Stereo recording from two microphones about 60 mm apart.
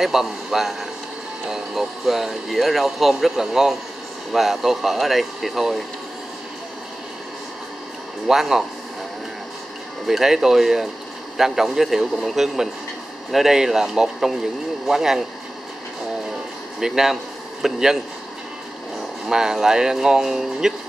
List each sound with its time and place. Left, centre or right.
0.0 s speech: centre
8.3 s speech: centre
10.0 s speech: centre
16.8 s speech: centre
19.2 s speech: centre